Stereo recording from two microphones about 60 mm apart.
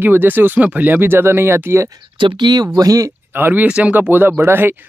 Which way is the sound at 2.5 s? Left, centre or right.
Right.